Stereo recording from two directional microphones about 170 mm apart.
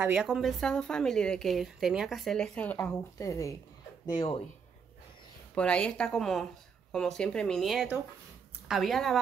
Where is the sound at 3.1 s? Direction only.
20° left (ahead or behind).